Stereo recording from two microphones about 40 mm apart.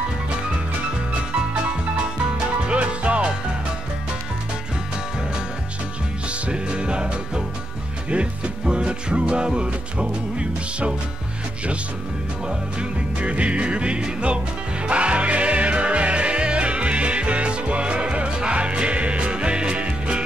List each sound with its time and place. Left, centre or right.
2.3 s music: right
6.2 s music: right
12.4 s music: right